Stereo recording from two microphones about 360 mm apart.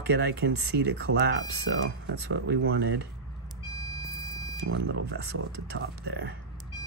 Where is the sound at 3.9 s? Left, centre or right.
Centre.